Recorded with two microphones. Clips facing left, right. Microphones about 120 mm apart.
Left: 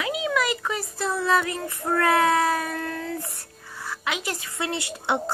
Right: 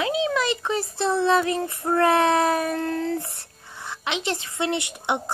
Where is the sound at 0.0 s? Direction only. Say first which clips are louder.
Right 2 dB; 30° right (ahead or behind).